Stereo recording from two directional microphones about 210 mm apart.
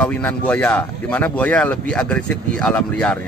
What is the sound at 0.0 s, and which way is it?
A man's voice, 5° left (ahead or behind).